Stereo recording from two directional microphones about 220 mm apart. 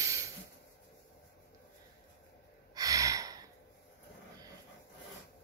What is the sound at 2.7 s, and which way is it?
Gasp, 15° right (ahead or behind).